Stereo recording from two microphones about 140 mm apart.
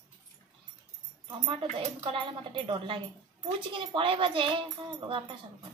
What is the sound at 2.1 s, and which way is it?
Music, 40° right (ahead or behind).